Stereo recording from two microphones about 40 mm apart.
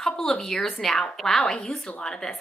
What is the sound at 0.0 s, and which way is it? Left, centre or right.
A woman's voice, centre.